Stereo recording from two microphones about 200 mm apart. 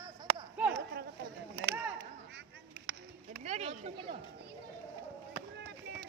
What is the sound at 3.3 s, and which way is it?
Speech, 35° right (ahead or behind).